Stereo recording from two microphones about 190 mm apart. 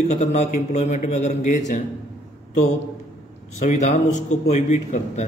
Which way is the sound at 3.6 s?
40° left (ahead or behind).